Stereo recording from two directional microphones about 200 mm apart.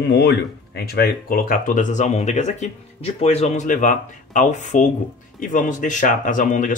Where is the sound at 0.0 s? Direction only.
55° left (ahead or behind).